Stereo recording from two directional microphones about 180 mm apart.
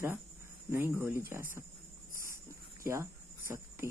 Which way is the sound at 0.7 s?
15° right (ahead or behind).